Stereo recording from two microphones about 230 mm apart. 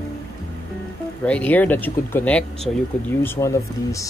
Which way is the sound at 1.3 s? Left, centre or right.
Centre.